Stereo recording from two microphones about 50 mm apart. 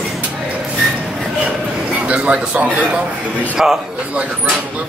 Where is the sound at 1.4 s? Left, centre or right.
Right.